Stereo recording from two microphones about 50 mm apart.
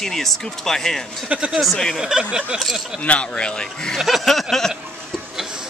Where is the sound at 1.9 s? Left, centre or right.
Centre.